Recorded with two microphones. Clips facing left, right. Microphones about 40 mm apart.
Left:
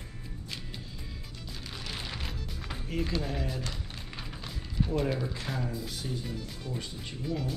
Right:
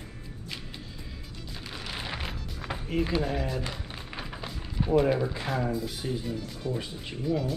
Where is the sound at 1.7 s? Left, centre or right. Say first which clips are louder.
Right 4 dB; centre.